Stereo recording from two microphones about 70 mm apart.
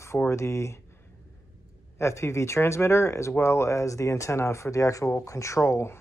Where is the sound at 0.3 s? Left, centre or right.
Left.